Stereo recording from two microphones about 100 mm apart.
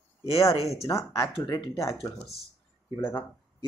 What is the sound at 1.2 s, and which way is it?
Speech, 50° left (ahead or behind).